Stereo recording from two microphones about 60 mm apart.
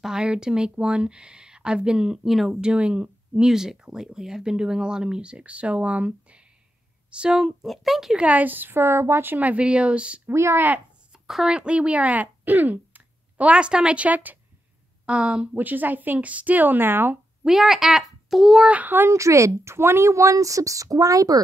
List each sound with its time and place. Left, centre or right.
0.0 s speech: centre
2.2 s speech: centre
2.6 s speech: centre
7.6 s speech: centre
8.2 s a woman's voice: right
10.3 s speech: right
11.2 s speech: centre
11.5 s a woman's voice: centre
15.5 s a woman's voice: right
17.4 s a child's voice: centre
18.7 s a woman's voice: right
19.0 s speech: right